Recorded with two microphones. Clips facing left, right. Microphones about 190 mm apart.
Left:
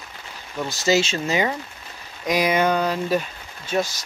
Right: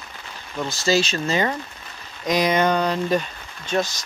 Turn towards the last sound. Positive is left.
turn(degrees=10)  # may be behind; listen again after turning